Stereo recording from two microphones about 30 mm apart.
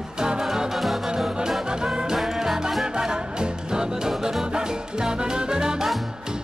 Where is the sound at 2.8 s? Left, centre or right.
Right.